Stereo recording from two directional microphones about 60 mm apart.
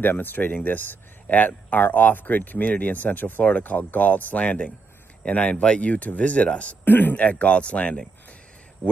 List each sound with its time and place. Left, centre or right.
0.0 s speech: left
6.8 s speech: left